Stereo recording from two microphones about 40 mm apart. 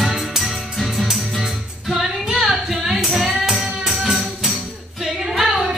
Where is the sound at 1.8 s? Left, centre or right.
Centre.